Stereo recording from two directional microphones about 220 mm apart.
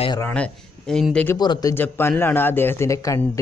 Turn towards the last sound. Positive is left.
turn(degrees=15)  # may be behind; listen again after turning